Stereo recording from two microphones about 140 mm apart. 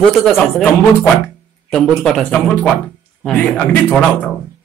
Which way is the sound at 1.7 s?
5° left (ahead or behind).